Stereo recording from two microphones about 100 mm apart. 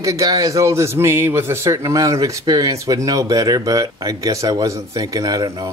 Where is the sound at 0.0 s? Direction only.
35° right (ahead or behind).